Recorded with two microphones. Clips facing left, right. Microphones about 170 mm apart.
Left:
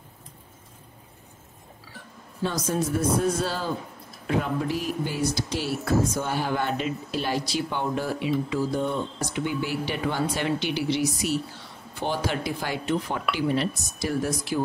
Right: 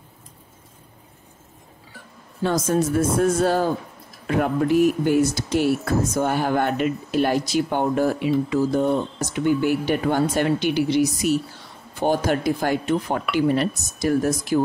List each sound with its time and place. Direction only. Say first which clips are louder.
2.4 s speech: right 6 dB; 55° right (ahead or behind)